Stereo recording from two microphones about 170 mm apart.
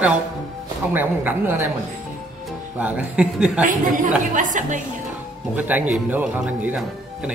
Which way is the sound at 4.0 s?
50° right (ahead or behind).